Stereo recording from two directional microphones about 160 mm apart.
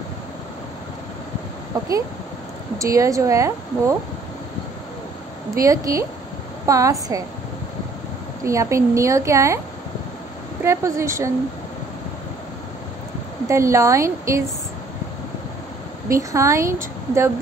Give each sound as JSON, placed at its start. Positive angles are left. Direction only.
{"t": 2.8, "sound": "a woman's voice", "side_deg": -20}
{"t": 5.5, "sound": "a woman's voice", "side_deg": -20}
{"t": 8.5, "sound": "a woman's voice", "side_deg": -20}
{"t": 10.6, "sound": "a woman's voice", "side_deg": -15}
{"t": 13.5, "sound": "a woman's voice", "side_deg": -20}
{"t": 16.1, "sound": "a woman's voice", "side_deg": -20}